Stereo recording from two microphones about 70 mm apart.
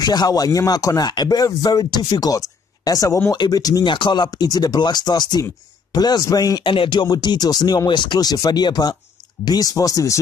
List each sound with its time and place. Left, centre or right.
0.0 s speech: left
3.3 s speech: left
6.2 s speech: left
9.4 s speech: left